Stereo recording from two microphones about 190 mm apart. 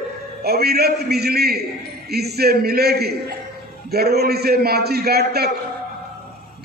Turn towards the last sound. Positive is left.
turn(degrees=-55)  # may be behind; listen again after turning